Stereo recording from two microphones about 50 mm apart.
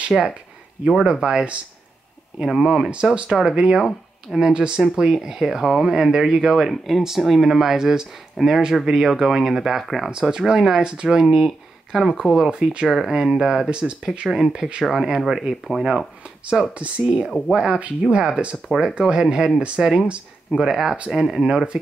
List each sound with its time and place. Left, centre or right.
0.1 s speech: centre
3.3 s speech: centre
10.1 s speech: centre
16.7 s speech: right